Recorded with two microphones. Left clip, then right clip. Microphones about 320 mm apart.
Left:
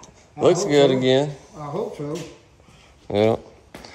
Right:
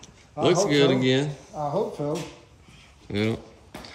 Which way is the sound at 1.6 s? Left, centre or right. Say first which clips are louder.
Right 2 dB; centre.